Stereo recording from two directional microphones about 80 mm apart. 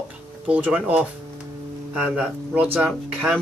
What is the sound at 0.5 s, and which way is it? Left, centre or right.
Speech, centre.